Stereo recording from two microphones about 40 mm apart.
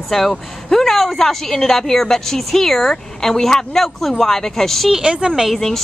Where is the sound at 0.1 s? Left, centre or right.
Centre.